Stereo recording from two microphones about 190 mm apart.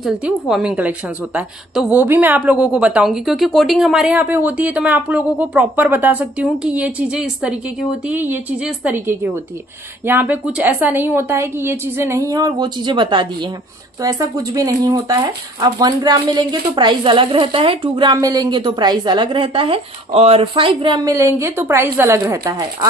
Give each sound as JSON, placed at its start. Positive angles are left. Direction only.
{"t": 0.0, "sound": "a woman's voice", "side_deg": -5}